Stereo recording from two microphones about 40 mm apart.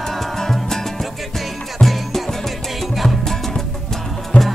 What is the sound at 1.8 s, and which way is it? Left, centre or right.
Music, centre.